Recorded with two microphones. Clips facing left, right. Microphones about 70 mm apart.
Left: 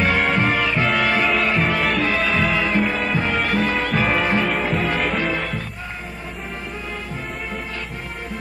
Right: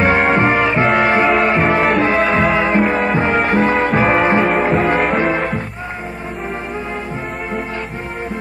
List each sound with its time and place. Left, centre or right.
0.0 s music: right
4.6 s music: centre
5.1 s music: right